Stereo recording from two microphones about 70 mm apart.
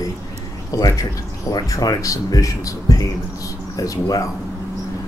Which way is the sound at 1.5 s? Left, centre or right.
Left.